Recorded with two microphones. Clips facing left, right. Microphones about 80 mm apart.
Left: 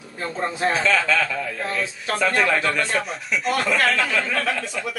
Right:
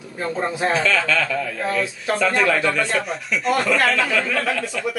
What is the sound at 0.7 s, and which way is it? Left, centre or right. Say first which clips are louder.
Speech: left 1 dB; centre.